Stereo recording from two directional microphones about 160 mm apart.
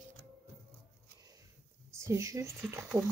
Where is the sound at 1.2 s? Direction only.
20° right (ahead or behind).